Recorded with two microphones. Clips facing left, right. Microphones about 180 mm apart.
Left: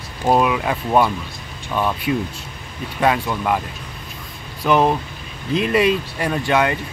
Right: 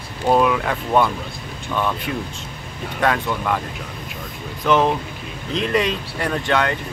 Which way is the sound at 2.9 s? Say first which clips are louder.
Left 2 dB; 10° left (ahead or behind).